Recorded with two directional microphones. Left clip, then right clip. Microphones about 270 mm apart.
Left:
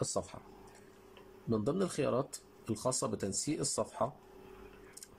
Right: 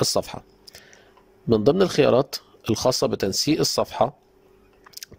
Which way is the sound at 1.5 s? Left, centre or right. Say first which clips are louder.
Right 16 dB; right.